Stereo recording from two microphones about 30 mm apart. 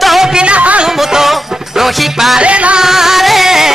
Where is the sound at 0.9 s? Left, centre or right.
Centre.